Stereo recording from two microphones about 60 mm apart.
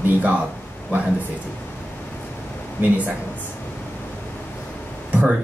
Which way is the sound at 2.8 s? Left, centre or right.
Right.